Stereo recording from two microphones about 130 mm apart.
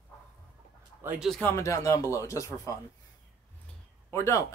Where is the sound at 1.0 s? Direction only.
15° right (ahead or behind).